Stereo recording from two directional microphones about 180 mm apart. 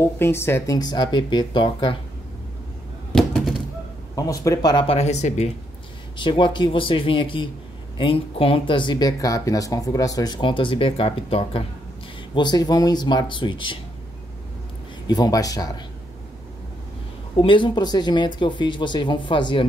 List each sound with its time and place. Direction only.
0.0 s speech: 15° left (ahead or behind)
3.1 s a sound: centre (ahead or behind)
4.1 s speech: 20° left (ahead or behind); by 5.5 s 40° left (ahead or behind)
6.1 s speech: 25° left (ahead or behind)
15.0 s speech: 20° left (ahead or behind)
17.4 s speech: 30° left (ahead or behind)